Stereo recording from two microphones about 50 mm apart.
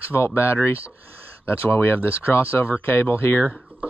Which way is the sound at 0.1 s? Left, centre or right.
Left.